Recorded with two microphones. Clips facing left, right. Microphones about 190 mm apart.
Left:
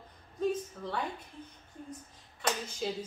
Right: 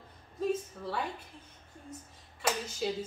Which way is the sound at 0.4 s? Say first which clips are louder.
Even; 5° right (ahead or behind).